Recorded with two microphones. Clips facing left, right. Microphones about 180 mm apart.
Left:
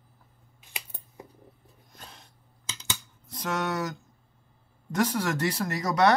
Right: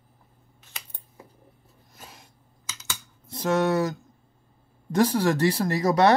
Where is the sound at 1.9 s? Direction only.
5° right (ahead or behind).